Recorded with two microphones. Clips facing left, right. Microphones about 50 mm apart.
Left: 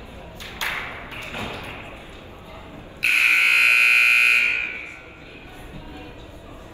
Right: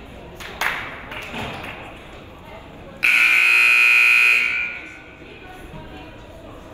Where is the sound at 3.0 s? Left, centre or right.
Right.